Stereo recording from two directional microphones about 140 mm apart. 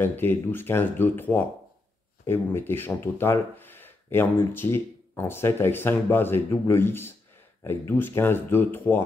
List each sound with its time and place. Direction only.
0.0 s speech: 15° left (ahead or behind)